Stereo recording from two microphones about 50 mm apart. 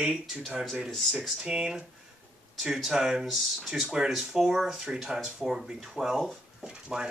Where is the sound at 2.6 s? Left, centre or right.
Centre.